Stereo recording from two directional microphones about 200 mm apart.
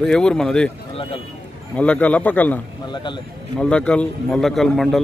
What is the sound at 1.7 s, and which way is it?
Speech, 5° left (ahead or behind).